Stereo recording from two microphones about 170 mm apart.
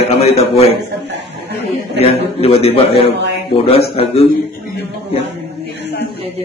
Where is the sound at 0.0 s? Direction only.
35° left (ahead or behind).